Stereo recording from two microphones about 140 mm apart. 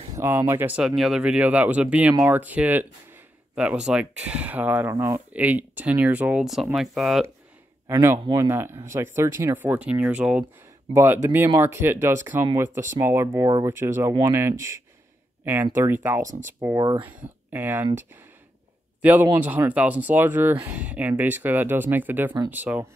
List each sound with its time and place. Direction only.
0.1 s speech: 20° right (ahead or behind); by 7.2 s centre (ahead or behind)
8.3 s speech: 20° right (ahead or behind)
17.2 s speech: 15° right (ahead or behind)
18.9 s speech: 10° right (ahead or behind)